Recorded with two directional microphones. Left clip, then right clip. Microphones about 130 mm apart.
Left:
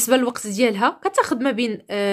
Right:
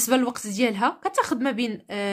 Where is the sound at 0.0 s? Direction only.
20° left (ahead or behind).